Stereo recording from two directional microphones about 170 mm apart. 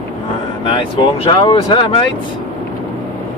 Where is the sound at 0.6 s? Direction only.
30° left (ahead or behind).